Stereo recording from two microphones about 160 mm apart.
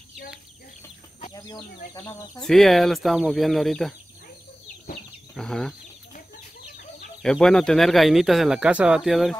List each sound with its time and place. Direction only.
1.3 s speech: 25° left (ahead or behind)
2.3 s speech: centre (ahead or behind)
5.3 s speech: 5° left (ahead or behind)
7.2 s speech: 5° left (ahead or behind)